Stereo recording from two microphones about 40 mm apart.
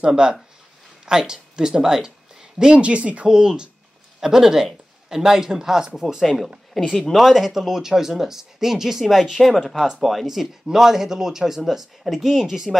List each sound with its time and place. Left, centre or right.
0.0 s speech: centre
2.7 s speech: right
3.3 s speech: centre
6.9 s speech: centre
9.3 s speech: centre
12.0 s speech: centre